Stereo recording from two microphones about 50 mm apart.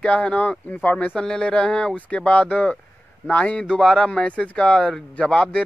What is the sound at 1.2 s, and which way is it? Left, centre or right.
Speech, centre.